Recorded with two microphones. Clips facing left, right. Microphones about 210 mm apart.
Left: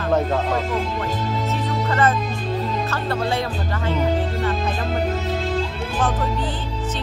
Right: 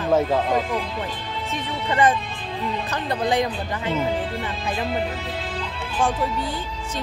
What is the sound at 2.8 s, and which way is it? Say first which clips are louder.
Speech: even; 15° right (ahead or behind).